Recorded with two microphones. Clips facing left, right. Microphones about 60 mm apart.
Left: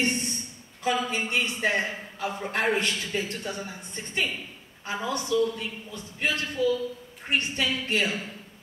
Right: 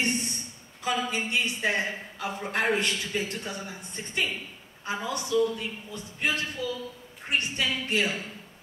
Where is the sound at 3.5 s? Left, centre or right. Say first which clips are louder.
Left 1 dB; left.